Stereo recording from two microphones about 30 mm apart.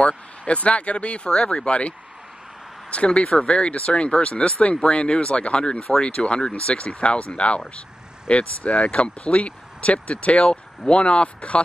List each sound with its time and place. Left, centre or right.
0.0 s speech: left
1.3 s speech: left
1.6 s speech: left
3.2 s speech: left